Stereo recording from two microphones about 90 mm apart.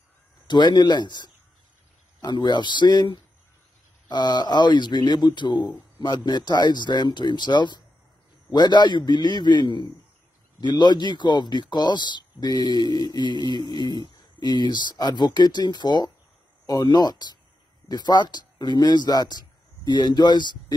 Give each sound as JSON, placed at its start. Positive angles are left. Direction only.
{"t": 0.5, "sound": "speech", "side_deg": 55}
{"t": 4.1, "sound": "speech", "side_deg": 50}